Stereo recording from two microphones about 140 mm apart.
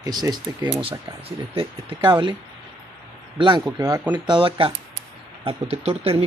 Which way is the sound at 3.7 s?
25° right (ahead or behind).